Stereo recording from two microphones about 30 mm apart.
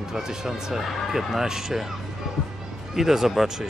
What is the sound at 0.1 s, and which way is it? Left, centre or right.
Speech, centre.